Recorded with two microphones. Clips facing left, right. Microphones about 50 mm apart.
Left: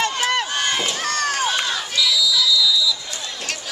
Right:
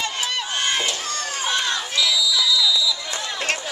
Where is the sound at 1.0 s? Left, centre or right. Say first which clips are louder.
Left 6 dB; left.